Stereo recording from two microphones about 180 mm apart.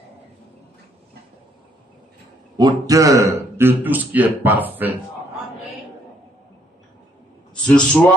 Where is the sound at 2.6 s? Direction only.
20° right (ahead or behind).